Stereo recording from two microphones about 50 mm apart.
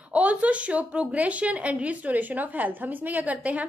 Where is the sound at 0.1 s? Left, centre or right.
Right.